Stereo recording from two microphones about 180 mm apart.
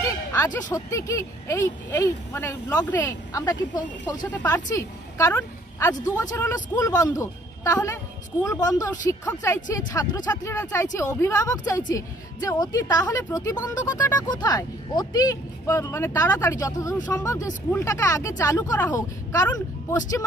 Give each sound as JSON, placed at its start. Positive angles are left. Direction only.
{"t": 0.0, "sound": "a woman's voice", "side_deg": 15}
{"t": 13.0, "sound": "speech", "side_deg": 10}